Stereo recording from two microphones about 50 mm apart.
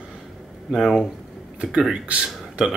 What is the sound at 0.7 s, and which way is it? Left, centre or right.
Speech, centre.